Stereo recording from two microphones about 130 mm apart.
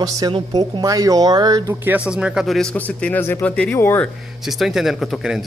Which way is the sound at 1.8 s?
10° right (ahead or behind).